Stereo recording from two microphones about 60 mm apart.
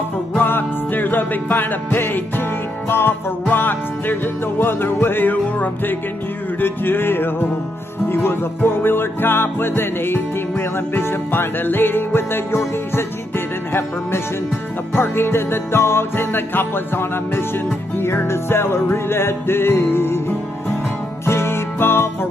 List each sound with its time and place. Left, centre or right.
0.4 s music: left
15.0 s music: left